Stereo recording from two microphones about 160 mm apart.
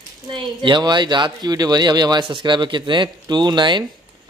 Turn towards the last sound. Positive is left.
turn(degrees=-30)  # may be behind; listen again after turning